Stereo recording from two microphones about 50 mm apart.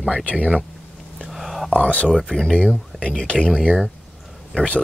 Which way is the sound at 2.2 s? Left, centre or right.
Centre.